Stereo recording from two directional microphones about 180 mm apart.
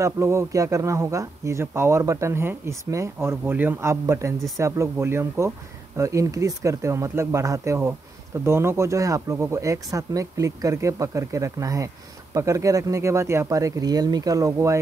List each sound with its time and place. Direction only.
0.0 s a man's voice: 15° right (ahead or behind)